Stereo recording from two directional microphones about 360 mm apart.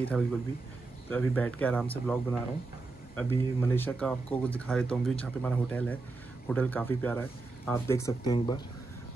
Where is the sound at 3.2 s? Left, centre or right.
Centre.